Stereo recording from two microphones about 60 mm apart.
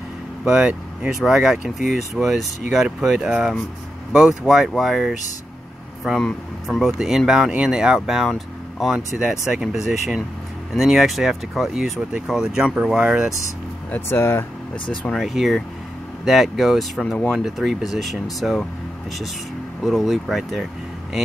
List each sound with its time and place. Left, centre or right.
0.5 s speech: centre
1.2 s speech: centre
6.1 s speech: centre
6.9 s speech: centre
11.7 s speech: centre
14.0 s speech: left
15.1 s speech: centre
19.8 s speech: centre